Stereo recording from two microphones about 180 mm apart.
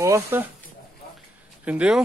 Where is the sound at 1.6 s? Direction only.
5° right (ahead or behind).